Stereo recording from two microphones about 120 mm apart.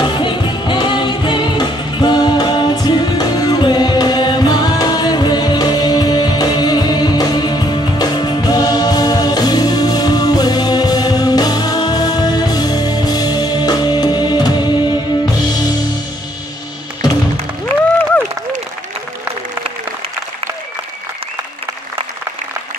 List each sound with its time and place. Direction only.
0.0 s music: 40° left (ahead or behind)